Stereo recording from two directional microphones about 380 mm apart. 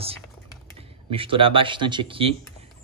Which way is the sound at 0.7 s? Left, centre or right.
Centre.